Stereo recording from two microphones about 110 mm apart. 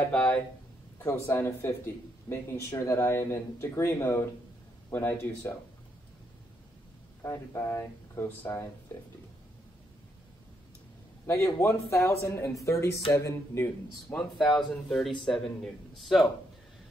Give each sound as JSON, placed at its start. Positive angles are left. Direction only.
{"t": 0.1, "sound": "speech", "side_deg": 5}
{"t": 0.9, "sound": "a man's voice", "side_deg": 25}
{"t": 7.2, "sound": "a man's voice", "side_deg": 25}
{"t": 11.2, "sound": "a man's voice", "side_deg": 25}
{"t": 14.1, "sound": "speech", "side_deg": 5}